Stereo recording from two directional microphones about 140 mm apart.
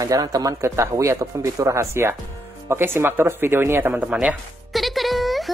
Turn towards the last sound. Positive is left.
turn(degrees=0)  # may be behind; listen again after turning